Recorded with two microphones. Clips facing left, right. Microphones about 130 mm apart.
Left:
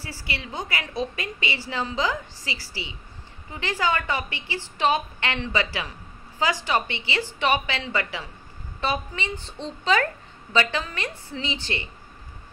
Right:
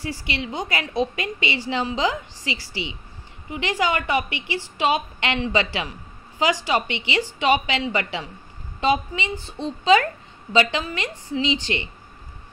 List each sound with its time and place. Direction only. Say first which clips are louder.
0.0 s a woman's voice: right 6 dB; 20° right (ahead or behind)